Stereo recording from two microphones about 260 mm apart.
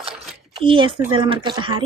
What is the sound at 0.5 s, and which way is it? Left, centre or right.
Speech, centre.